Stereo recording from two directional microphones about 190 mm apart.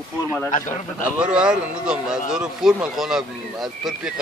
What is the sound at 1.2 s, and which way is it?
Speech, 5° right (ahead or behind).